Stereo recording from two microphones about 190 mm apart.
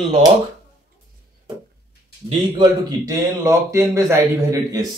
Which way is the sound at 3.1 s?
15° right (ahead or behind).